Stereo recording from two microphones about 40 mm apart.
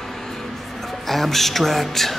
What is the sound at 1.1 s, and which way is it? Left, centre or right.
Speech, centre.